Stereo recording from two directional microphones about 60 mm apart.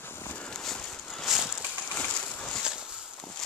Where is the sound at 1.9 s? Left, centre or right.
Centre.